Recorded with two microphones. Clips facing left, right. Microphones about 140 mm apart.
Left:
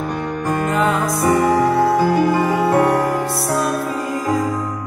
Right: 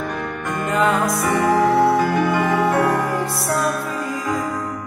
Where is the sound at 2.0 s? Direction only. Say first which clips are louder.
Left 3 dB; 35° left (ahead or behind).